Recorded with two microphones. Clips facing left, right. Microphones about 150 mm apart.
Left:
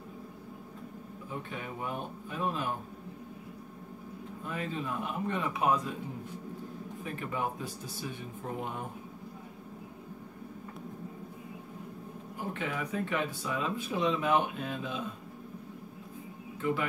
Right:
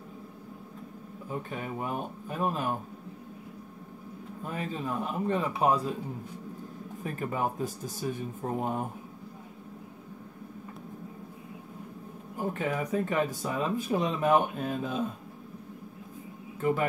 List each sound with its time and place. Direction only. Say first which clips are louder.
1.5 s speech: right 3 dB; 45° right (ahead or behind)
4.5 s a man's voice: right 2 dB; 40° right (ahead or behind)
7.0 s speech: right 4 dB; 45° right (ahead or behind)
12.4 s speech: right 5 dB; 45° right (ahead or behind)
16.6 s speech: right 4 dB; 45° right (ahead or behind)